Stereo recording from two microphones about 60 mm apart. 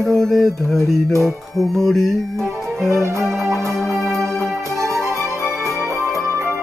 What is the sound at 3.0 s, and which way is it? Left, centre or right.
Music, right.